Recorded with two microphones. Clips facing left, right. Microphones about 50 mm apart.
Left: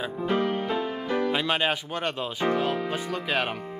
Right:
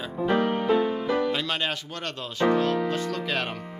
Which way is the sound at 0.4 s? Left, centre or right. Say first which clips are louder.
Right 5 dB; centre.